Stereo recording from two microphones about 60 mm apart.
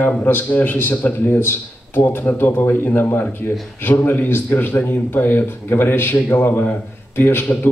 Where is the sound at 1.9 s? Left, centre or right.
Left.